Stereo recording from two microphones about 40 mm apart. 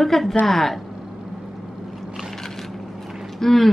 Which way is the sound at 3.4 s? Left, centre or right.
Centre.